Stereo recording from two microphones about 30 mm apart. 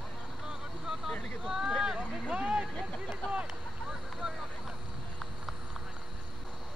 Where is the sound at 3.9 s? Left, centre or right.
Right.